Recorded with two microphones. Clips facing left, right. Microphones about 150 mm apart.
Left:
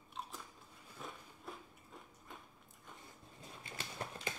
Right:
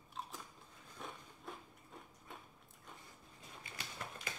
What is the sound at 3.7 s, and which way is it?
Horse, 25° left (ahead or behind).